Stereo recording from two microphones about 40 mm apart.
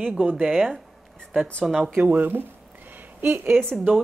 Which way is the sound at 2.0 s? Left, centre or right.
Right.